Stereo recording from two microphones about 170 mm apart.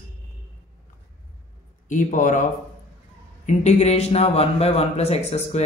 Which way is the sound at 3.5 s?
45° left (ahead or behind).